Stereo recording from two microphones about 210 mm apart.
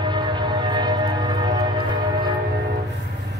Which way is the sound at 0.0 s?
20° right (ahead or behind).